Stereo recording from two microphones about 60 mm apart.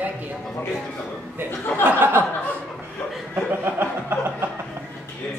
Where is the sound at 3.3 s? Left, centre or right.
Right.